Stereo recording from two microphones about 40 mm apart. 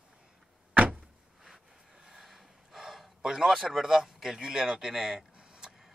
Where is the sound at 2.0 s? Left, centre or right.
Centre.